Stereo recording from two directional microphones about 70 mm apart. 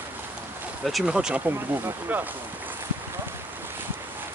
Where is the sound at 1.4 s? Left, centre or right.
Right.